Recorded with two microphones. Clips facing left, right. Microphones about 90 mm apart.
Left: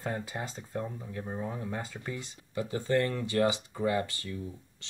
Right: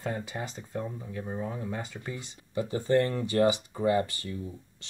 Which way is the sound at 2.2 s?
25° right (ahead or behind).